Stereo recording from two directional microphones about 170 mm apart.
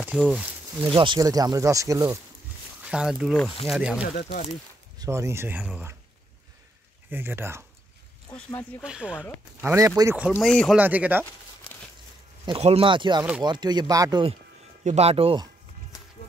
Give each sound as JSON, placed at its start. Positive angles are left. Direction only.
{"t": 0.0, "sound": "speech", "side_deg": -5}
{"t": 0.8, "sound": "speech", "side_deg": -30}
{"t": 2.8, "sound": "speech", "side_deg": -5}
{"t": 4.9, "sound": "speech", "side_deg": -20}
{"t": 7.1, "sound": "speech", "side_deg": -10}
{"t": 8.8, "sound": "speech", "side_deg": -5}
{"t": 10.4, "sound": "speech", "side_deg": 5}
{"t": 10.8, "sound": "speech", "side_deg": -10}
{"t": 12.4, "sound": "speech", "side_deg": -35}
{"t": 14.9, "sound": "speech", "side_deg": -40}